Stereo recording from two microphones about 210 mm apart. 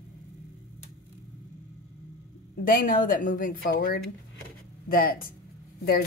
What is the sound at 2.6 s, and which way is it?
Speech, 40° left (ahead or behind).